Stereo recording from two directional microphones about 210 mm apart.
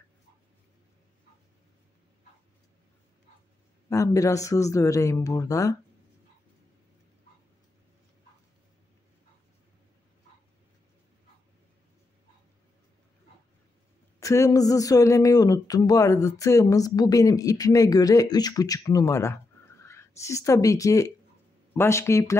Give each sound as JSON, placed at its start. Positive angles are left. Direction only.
{"t": 3.9, "sound": "speech", "side_deg": 15}
{"t": 14.2, "sound": "speech", "side_deg": 15}